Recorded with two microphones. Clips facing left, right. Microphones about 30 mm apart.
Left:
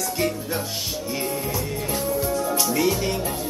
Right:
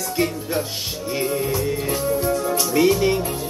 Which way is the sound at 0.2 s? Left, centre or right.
Centre.